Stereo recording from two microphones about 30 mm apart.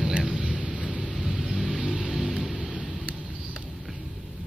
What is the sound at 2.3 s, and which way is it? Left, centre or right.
Vehicle, centre.